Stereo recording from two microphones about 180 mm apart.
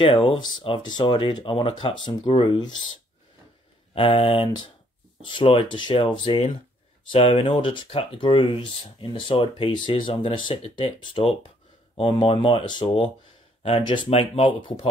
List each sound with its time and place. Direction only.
0.0 s speech: 30° left (ahead or behind)
3.9 s speech: 30° left (ahead or behind)